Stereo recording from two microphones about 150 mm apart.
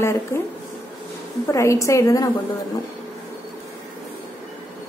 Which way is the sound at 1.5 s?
20° left (ahead or behind).